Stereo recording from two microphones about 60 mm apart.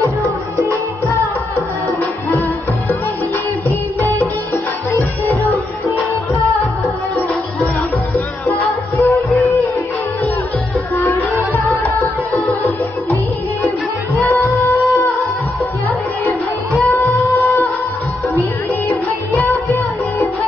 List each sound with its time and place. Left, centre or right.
8.5 s music: left
14.2 s music: left
16.9 s music: left
19.3 s music: left